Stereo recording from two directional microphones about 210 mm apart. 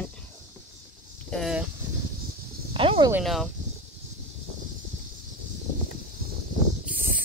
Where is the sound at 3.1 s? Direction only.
Centre (ahead or behind).